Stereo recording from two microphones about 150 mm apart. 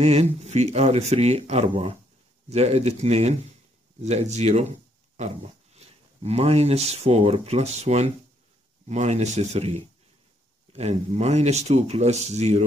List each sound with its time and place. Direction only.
0.0 s speech: 45° right (ahead or behind)